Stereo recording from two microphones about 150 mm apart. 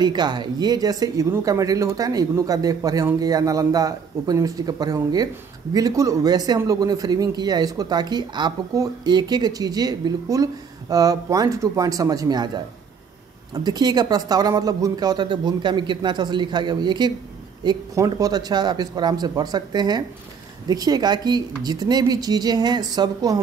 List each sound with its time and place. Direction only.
0.0 s a man's voice: 30° right (ahead or behind)
13.7 s a man's voice: 25° right (ahead or behind)